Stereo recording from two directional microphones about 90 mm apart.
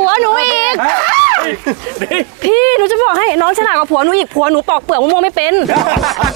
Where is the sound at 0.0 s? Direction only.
25° right (ahead or behind).